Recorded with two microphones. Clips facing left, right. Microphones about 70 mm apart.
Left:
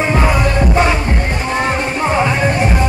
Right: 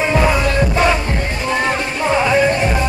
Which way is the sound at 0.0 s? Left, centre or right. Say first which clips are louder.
Even; centre.